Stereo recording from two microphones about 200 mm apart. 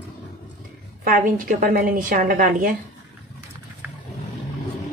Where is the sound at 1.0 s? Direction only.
45° right (ahead or behind).